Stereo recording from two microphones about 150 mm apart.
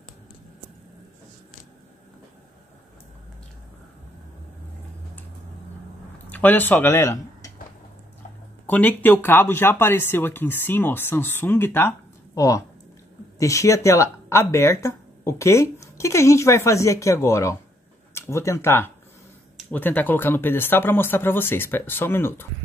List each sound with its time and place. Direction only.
6.3 s speech: 10° left (ahead or behind)
8.6 s speech: 10° left (ahead or behind)